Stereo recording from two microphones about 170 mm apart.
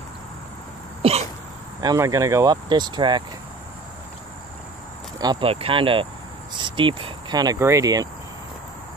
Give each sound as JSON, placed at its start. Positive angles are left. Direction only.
{"t": 1.0, "sound": "cough", "side_deg": -35}
{"t": 1.8, "sound": "speech", "side_deg": -20}
{"t": 5.2, "sound": "speech", "side_deg": -30}